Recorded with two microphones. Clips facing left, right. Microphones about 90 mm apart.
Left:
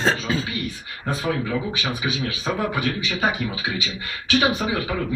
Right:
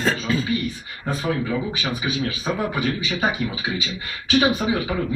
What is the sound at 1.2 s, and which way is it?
A man's voice, centre (ahead or behind).